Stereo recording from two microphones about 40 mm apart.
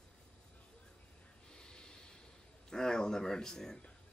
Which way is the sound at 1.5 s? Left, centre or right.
Left.